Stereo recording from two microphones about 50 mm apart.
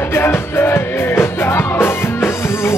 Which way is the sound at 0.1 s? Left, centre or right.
Left.